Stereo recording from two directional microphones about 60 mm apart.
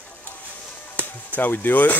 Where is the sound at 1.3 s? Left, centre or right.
Left.